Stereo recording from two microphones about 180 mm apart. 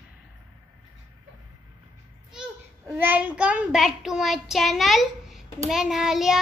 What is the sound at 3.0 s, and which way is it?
Child singing, 10° right (ahead or behind).